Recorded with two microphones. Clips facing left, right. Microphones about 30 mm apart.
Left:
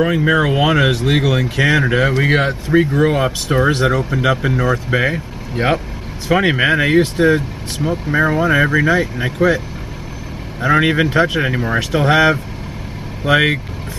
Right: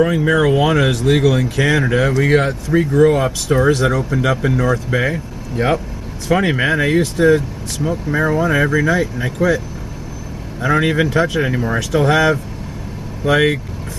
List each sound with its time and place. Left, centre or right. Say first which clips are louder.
0.0 s speech: even; left
4.9 s speech: left 1 dB; left
10.6 s speech: left 2 dB; left